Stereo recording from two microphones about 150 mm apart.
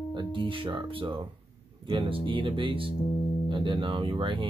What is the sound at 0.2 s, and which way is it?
Speech, 35° right (ahead or behind).